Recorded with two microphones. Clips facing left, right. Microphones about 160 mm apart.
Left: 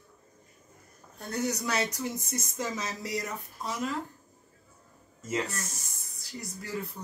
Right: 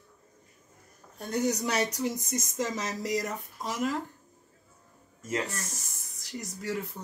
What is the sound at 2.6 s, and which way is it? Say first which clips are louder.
Speech: right 3 dB; 40° right (ahead or behind).